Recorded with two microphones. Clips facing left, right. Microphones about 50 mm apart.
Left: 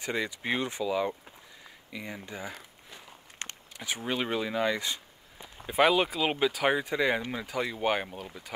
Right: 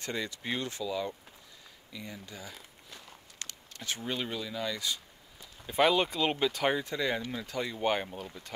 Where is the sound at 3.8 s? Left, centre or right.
Centre.